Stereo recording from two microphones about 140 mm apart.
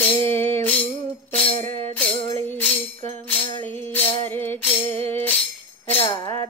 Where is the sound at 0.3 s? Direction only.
15° left (ahead or behind).